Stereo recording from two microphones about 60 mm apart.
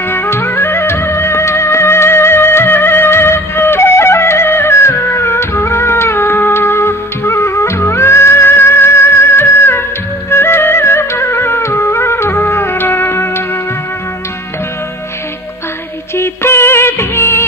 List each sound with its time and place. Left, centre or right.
0.1 s music: left
16.2 s music: left